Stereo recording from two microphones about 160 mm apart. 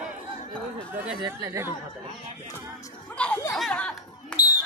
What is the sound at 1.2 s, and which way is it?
Speech, 20° right (ahead or behind).